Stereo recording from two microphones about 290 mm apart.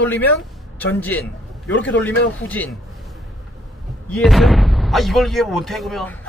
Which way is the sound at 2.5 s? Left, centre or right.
Centre.